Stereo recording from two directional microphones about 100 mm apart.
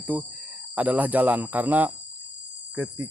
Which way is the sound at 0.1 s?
15° right (ahead or behind).